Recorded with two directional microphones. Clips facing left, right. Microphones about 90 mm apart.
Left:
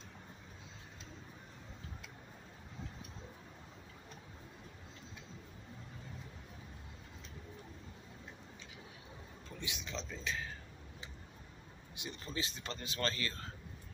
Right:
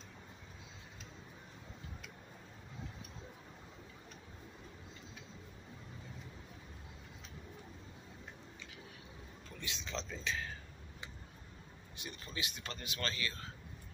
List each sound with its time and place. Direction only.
9.6 s a sound: 15° left (ahead or behind)
9.8 s speech: 5° left (ahead or behind)
11.9 s speech: 20° left (ahead or behind); by 13.5 s 40° left (ahead or behind)